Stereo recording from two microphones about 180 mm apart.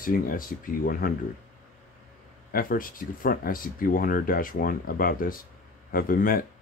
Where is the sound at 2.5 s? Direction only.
50° left (ahead or behind).